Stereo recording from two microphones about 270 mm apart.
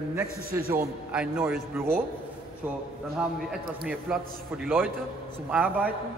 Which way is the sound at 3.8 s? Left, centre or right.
Centre.